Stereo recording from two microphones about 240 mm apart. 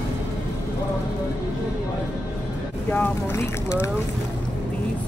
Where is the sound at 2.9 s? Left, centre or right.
Centre.